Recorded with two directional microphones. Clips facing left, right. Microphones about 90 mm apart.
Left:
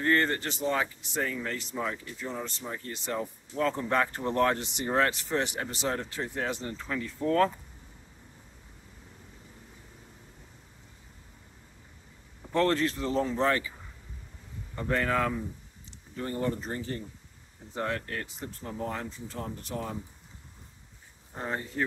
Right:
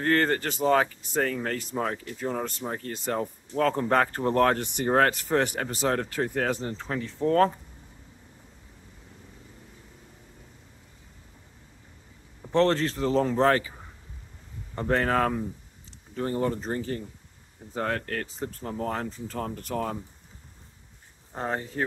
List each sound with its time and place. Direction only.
0.0 s speech: 50° right (ahead or behind)
1.3 s speech: 55° right (ahead or behind)
3.5 s speech: 55° right (ahead or behind)
3.8 s speech: 45° right (ahead or behind)
6.6 s speech: 35° right (ahead or behind)
12.5 s speech: 30° right (ahead or behind)
14.8 s speech: 40° right (ahead or behind)
17.7 s speech: 50° right (ahead or behind)
18.2 s speech: 40° right (ahead or behind)
19.3 s speech: 60° right (ahead or behind)